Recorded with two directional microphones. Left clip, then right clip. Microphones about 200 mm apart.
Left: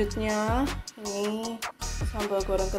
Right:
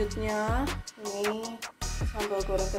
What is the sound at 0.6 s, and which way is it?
Music, centre (ahead or behind).